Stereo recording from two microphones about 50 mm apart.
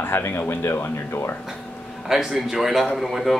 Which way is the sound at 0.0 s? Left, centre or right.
Left.